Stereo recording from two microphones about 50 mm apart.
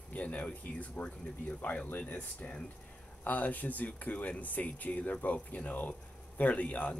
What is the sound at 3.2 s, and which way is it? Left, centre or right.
Speech, left.